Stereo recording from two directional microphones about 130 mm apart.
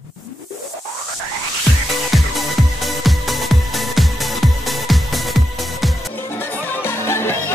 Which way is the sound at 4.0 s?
Centre (ahead or behind).